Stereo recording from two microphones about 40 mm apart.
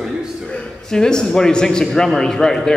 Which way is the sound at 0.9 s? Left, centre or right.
Centre.